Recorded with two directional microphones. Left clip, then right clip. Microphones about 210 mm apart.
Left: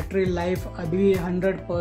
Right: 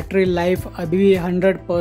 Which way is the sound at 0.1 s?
35° right (ahead or behind).